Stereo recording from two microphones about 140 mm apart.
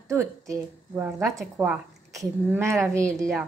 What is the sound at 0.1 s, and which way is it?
A woman's voice, 20° right (ahead or behind).